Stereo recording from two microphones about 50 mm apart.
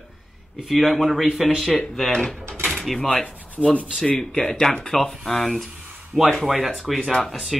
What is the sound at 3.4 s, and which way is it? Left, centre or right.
Rub, right.